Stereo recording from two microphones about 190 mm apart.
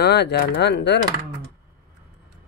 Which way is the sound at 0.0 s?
60° left (ahead or behind).